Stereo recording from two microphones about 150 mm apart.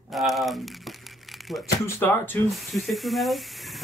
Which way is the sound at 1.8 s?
15° left (ahead or behind).